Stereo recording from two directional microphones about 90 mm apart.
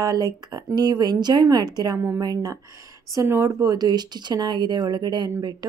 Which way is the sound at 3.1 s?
30° right (ahead or behind).